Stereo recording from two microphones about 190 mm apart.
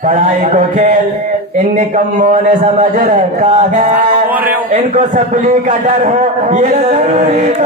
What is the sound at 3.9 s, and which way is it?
Music, 10° right (ahead or behind).